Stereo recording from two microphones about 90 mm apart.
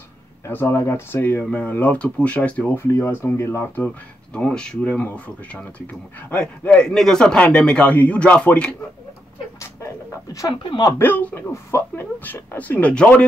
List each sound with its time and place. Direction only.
0.5 s speech: 25° left (ahead or behind)
4.3 s speech: 10° left (ahead or behind)
11.0 s speech: 20° left (ahead or behind)